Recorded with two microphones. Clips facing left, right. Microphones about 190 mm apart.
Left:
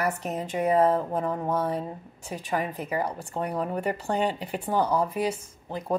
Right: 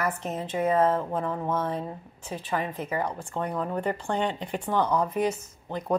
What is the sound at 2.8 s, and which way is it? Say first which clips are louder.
Speech: left 1 dB; 35° left (ahead or behind).